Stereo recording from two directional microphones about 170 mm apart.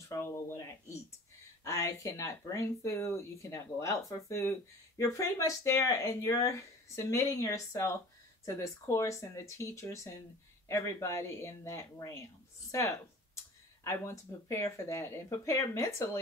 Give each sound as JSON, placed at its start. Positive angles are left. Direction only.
{"t": 0.1, "sound": "a sound", "side_deg": 15}
{"t": 1.6, "sound": "speech", "side_deg": 20}
{"t": 13.8, "sound": "speech", "side_deg": 15}